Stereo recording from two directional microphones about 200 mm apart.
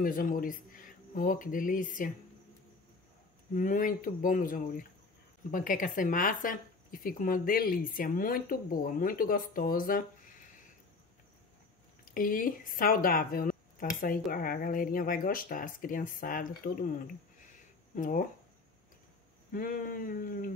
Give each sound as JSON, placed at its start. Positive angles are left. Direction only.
{"t": 0.0, "sound": "speech", "side_deg": 45}
{"t": 3.5, "sound": "speech", "side_deg": 40}
{"t": 12.0, "sound": "speech", "side_deg": 45}
{"t": 17.9, "sound": "speech", "side_deg": 40}
{"t": 19.5, "sound": "speech", "side_deg": 45}